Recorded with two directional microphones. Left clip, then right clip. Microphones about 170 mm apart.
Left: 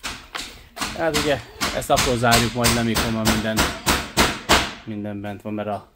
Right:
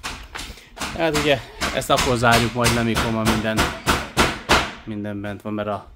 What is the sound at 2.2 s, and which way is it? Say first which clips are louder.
Speech: right 1 dB; 10° right (ahead or behind).